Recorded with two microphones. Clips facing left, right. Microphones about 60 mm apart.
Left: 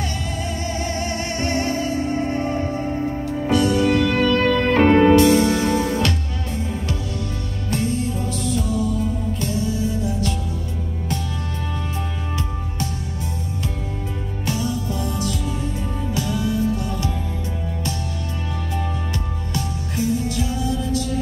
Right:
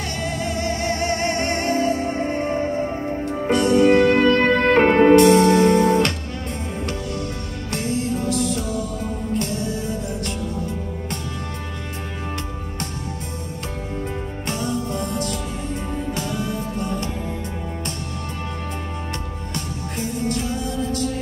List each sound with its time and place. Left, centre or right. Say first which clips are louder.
0.4 s music: right 2 dB; right
5.1 s music: right 2 dB; right
7.7 s music: even; right
14.4 s music: left 1 dB; right
19.5 s music: left 3 dB; right